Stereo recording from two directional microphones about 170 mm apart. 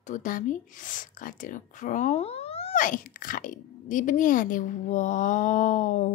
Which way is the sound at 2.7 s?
50° left (ahead or behind).